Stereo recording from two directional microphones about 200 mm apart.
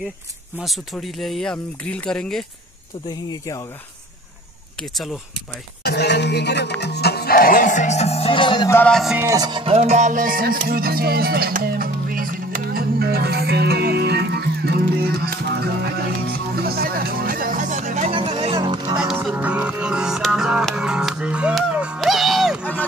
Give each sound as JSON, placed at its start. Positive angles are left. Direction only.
{"t": 0.6, "sound": "speech", "side_deg": 0}
{"t": 3.1, "sound": "speech", "side_deg": 20}
{"t": 4.9, "sound": "speech", "side_deg": 0}
{"t": 5.9, "sound": "music", "side_deg": 55}
{"t": 6.8, "sound": "speech", "side_deg": 55}
{"t": 8.7, "sound": "speech", "side_deg": 5}
{"t": 9.2, "sound": "music", "side_deg": -15}
{"t": 18.9, "sound": "music", "side_deg": -5}